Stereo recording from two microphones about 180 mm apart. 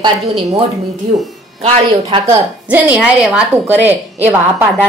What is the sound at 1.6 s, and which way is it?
Speech, 30° right (ahead or behind).